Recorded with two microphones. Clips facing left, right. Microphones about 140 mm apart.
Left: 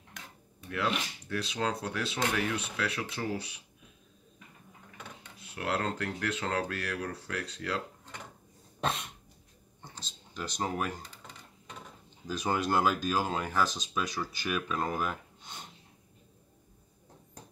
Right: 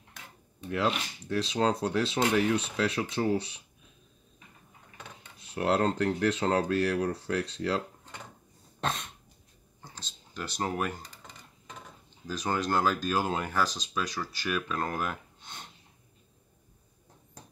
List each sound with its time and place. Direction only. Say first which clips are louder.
0.6 s speech: right 3 dB; 25° right (ahead or behind)
5.5 s speech: right 6 dB; 30° right (ahead or behind)
8.8 s cough: even; 5° left (ahead or behind)
10.3 s speech: right 1 dB; centre (ahead or behind)
13.2 s speech: right 1 dB; 5° right (ahead or behind)